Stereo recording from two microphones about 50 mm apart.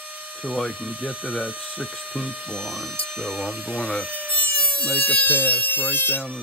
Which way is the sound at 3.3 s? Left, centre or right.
Right.